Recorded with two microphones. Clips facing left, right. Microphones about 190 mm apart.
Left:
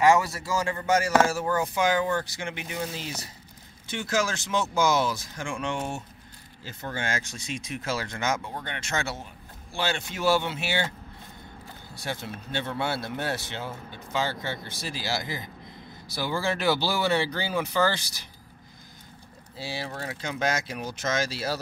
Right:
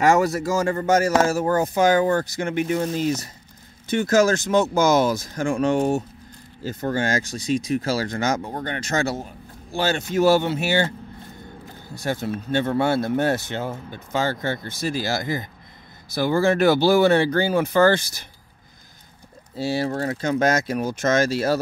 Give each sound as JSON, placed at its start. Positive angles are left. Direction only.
{"t": 0.0, "sound": "speech", "side_deg": -45}
{"t": 11.9, "sound": "speech", "side_deg": -45}
{"t": 19.5, "sound": "speech", "side_deg": -45}